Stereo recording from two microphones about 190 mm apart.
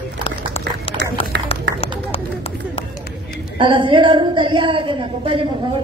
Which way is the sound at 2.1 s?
30° left (ahead or behind).